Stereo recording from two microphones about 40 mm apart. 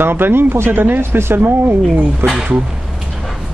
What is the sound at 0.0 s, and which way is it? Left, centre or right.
Speech, right.